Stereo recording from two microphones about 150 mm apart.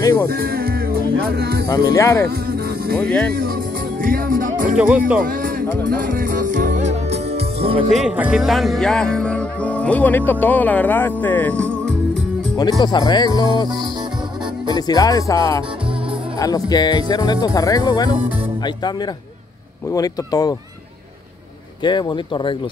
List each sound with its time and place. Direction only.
0.0 s music: 20° left (ahead or behind)
0.3 s music: 90° right
1.9 s speech: 20° left (ahead or behind)
2.2 s music: 90° right
3.0 s music: 10° left (ahead or behind)
4.0 s music: 70° right (ahead or behind)
4.7 s speech: 10° right (ahead or behind)
5.2 s speech: 70° right (ahead or behind)
5.9 s music: 70° right (ahead or behind); by 7.8 s 40° right (ahead or behind)
7.9 s music: 5° right (ahead or behind)
12.8 s speech: 30° left (ahead or behind)
14.7 s speech: 25° left (ahead or behind)
21.8 s speech: 30° left (ahead or behind)